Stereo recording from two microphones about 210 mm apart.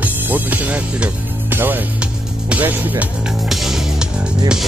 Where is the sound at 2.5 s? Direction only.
10° right (ahead or behind).